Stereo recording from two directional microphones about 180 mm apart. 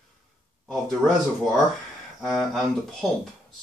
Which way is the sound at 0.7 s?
Centre (ahead or behind).